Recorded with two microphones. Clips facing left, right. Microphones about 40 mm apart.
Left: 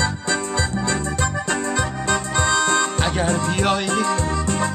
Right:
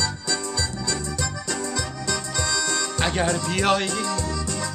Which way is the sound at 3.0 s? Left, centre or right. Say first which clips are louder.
Left 1 dB; centre.